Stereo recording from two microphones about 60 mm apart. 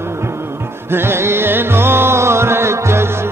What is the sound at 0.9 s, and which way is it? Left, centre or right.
Music, right.